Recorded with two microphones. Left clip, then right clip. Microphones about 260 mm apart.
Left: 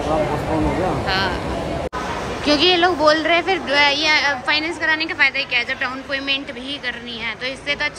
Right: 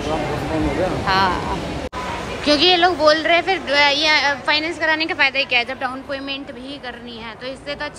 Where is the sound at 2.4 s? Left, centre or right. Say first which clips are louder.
Right 1 dB; centre.